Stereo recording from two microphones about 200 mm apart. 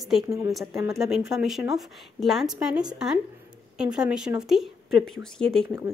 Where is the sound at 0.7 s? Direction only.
15° right (ahead or behind).